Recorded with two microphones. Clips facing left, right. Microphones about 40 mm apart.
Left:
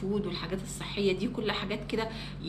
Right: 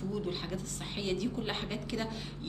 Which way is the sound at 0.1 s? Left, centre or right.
Centre.